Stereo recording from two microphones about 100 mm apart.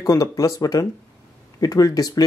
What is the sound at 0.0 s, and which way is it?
Speech, 35° left (ahead or behind).